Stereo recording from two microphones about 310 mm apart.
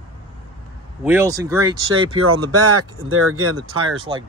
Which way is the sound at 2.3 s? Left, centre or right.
Right.